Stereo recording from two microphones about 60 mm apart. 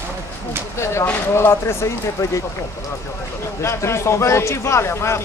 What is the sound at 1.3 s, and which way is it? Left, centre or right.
Speech, left.